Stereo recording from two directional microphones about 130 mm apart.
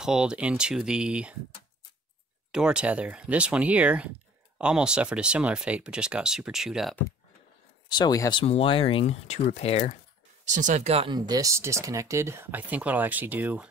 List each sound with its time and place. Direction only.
0.0 s speech: 5° right (ahead or behind)
2.5 s speech: 5° right (ahead or behind)
7.9 s speech: 30° left (ahead or behind)
8.4 s speech: 45° left (ahead or behind)
10.5 s speech: 65° right (ahead or behind); by 11.1 s 50° right (ahead or behind)
11.1 s speech: 30° right (ahead or behind); by 13.7 s 15° right (ahead or behind)